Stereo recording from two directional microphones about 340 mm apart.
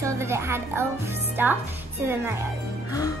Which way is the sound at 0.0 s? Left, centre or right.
Centre.